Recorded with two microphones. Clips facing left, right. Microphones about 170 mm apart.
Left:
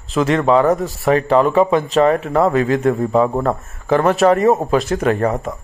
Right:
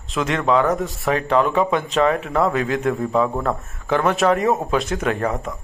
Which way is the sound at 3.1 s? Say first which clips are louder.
Left 4 dB; 35° left (ahead or behind).